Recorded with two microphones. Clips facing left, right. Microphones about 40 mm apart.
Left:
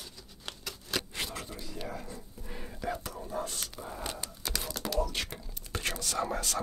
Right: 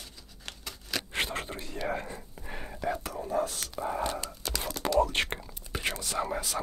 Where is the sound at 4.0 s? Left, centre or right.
Right.